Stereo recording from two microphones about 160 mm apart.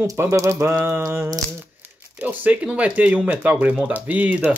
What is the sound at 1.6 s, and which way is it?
Speech, 10° right (ahead or behind).